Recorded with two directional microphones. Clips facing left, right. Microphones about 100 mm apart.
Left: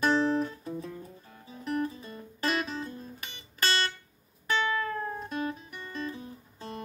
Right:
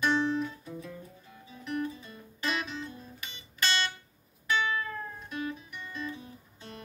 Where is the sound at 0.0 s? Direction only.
40° left (ahead or behind).